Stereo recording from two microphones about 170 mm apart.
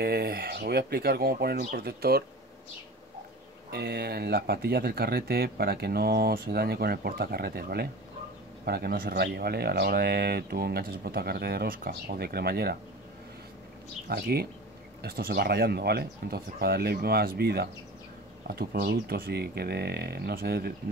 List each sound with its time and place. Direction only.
0.0 s speech: 65° right (ahead or behind)
3.7 s speech: 65° right (ahead or behind)
14.0 s speech: 65° right (ahead or behind)